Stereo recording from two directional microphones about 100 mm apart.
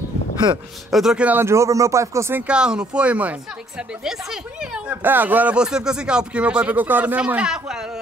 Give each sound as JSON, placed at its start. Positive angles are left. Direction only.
{"t": 0.8, "sound": "a woman's voice", "side_deg": -5}
{"t": 1.4, "sound": "speech", "side_deg": -30}
{"t": 2.3, "sound": "a woman's voice", "side_deg": -10}